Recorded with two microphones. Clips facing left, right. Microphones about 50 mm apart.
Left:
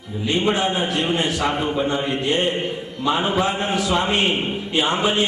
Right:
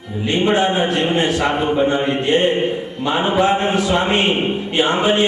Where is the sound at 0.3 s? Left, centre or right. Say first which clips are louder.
Right 4 dB; right.